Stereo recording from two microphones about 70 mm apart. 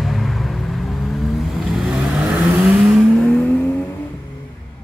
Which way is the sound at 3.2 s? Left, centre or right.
Centre.